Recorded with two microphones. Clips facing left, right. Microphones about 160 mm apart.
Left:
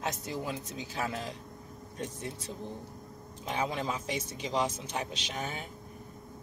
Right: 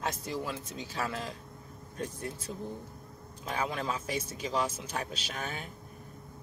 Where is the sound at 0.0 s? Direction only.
20° left (ahead or behind).